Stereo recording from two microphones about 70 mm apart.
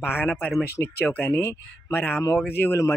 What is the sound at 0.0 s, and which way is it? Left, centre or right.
Speech, left.